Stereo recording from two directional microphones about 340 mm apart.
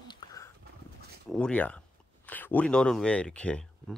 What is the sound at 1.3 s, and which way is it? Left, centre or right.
Speech, centre.